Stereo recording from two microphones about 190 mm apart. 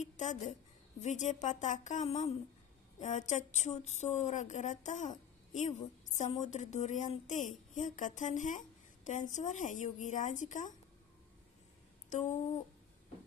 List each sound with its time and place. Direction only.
0.0 s a woman's voice: 40° left (ahead or behind)
12.1 s speech: 40° left (ahead or behind)